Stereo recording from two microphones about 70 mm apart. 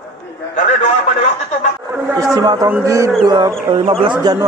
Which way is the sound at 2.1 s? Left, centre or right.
Right.